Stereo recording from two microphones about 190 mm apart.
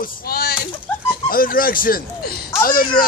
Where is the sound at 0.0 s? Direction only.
55° left (ahead or behind).